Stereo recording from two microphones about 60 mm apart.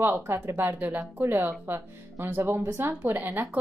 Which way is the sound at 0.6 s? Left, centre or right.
Right.